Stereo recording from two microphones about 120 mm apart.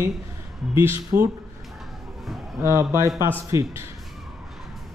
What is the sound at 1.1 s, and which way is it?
Speech, 25° right (ahead or behind).